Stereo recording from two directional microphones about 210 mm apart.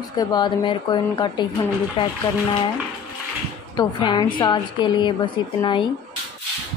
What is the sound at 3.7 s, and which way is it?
Speech, 20° left (ahead or behind).